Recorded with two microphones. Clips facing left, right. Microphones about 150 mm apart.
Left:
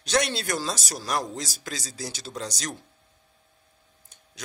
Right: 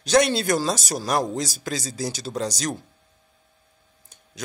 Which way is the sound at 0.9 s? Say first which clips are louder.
Right 5 dB; 45° right (ahead or behind).